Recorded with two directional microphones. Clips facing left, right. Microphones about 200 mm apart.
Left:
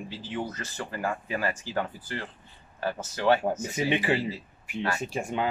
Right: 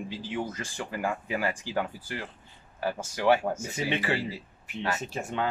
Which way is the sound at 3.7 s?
15° left (ahead or behind).